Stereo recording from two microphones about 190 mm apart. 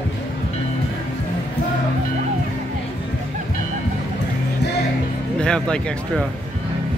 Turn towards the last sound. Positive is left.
turn(degrees=5)  # may be behind; listen again after turning